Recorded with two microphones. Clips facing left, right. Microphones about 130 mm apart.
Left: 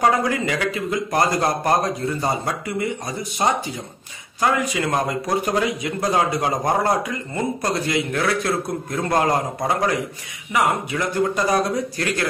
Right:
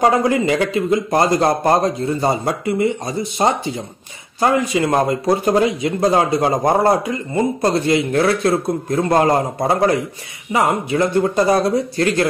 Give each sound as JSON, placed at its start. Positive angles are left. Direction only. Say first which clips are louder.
{"t": 0.0, "sound": "speech", "louder": "right 4 dB", "side_deg": -25}